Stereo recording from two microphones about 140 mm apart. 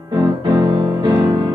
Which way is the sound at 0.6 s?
30° right (ahead or behind).